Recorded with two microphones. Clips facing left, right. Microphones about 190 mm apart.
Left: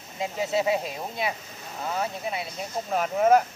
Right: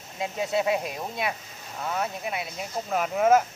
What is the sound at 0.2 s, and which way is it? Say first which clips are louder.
Speech: even; centre (ahead or behind).